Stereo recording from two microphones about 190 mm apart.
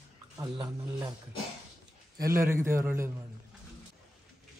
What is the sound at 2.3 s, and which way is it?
Speech, 15° right (ahead or behind).